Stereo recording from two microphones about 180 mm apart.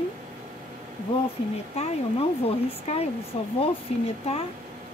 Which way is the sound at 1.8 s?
35° left (ahead or behind).